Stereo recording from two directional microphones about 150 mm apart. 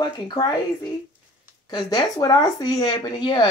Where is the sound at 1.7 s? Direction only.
25° left (ahead or behind).